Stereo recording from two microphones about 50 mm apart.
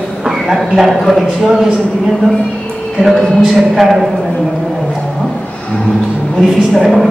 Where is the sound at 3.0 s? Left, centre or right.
Centre.